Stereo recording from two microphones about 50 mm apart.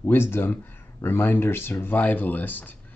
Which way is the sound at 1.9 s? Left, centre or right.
Left.